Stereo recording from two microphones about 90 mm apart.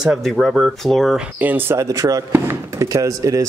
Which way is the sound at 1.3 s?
20° right (ahead or behind).